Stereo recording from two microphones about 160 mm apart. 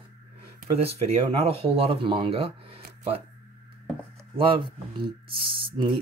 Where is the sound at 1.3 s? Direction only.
35° right (ahead or behind).